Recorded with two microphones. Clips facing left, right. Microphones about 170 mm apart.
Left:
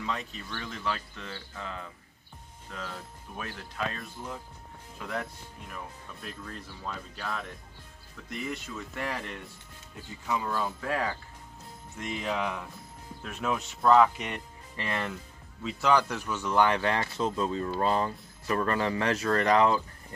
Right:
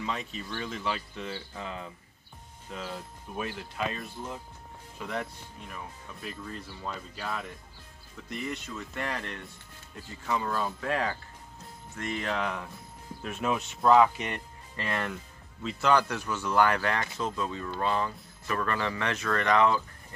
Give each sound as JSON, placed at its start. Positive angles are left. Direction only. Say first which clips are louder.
{"t": 0.0, "sound": "speech", "louder": "right 1 dB", "side_deg": -5}
{"t": 16.5, "sound": "speech", "louder": "even", "side_deg": 25}